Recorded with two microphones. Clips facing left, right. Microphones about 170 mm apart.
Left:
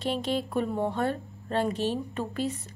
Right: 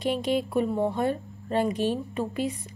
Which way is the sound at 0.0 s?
10° right (ahead or behind).